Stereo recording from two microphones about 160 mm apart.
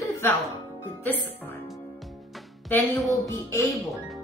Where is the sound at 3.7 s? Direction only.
Centre (ahead or behind).